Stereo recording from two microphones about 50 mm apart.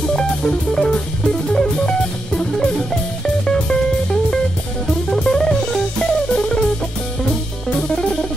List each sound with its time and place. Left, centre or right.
0.0 s music: centre
7.9 s music: centre